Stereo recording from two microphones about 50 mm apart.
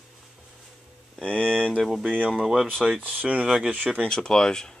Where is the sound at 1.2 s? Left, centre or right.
Left.